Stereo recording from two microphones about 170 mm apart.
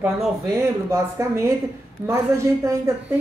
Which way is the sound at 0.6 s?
15° right (ahead or behind).